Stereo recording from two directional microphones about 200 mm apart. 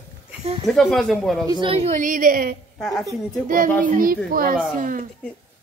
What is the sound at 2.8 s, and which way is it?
Speech, centre (ahead or behind).